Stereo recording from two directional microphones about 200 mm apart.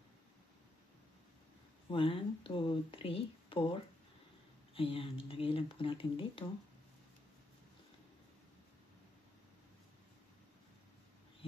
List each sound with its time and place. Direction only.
1.9 s speech: 25° left (ahead or behind)